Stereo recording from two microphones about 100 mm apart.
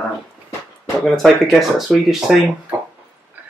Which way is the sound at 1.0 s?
5° left (ahead or behind).